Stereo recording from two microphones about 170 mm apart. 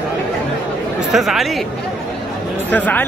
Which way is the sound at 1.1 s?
Centre (ahead or behind).